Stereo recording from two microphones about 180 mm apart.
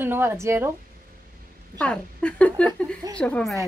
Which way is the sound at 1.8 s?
5° left (ahead or behind).